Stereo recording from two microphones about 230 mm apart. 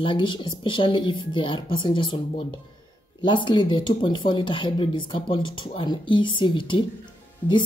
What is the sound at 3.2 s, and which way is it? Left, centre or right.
Speech, left.